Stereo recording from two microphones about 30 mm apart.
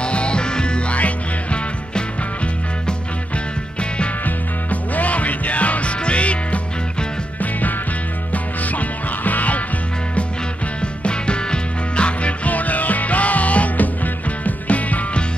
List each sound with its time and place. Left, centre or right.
0.0 s music: left
0.9 s music: left
4.6 s music: left
8.7 s music: left
11.1 s music: left
12.5 s music: left